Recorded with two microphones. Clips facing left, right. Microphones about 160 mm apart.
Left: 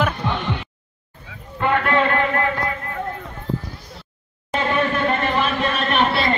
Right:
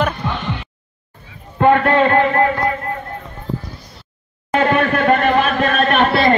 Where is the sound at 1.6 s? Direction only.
45° right (ahead or behind).